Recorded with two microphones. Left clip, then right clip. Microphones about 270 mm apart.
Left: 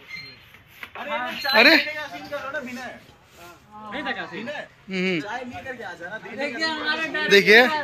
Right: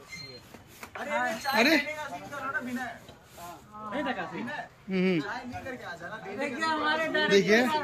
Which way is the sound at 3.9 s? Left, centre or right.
Centre.